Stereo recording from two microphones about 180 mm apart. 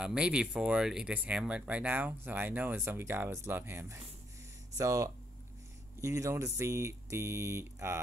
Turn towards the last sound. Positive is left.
turn(degrees=-15)  # may be behind; listen again after turning